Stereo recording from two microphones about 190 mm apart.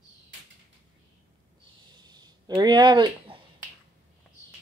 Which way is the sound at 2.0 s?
20° right (ahead or behind).